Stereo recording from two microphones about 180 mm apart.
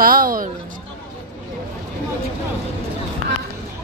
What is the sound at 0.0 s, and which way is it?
Music, 50° right (ahead or behind).